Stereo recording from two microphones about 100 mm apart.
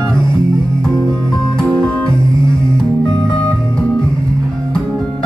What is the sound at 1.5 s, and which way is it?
Music, 10° left (ahead or behind).